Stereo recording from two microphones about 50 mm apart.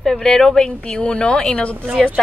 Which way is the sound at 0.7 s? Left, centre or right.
Left.